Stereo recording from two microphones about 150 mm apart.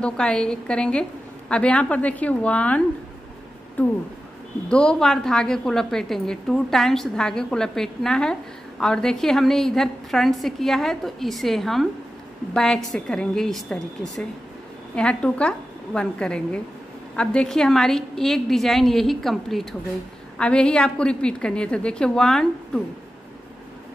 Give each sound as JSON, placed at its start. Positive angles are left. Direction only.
{"t": 0.0, "sound": "a woman's voice", "side_deg": 5}